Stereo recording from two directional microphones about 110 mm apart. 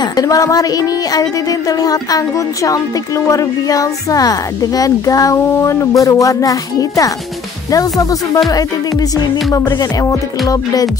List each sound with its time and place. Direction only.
0.0 s speech: 35° left (ahead or behind)